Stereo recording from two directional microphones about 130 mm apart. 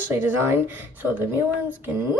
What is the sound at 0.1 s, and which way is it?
A woman's voice, 20° right (ahead or behind).